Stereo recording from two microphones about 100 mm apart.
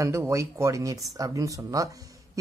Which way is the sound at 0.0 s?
30° right (ahead or behind).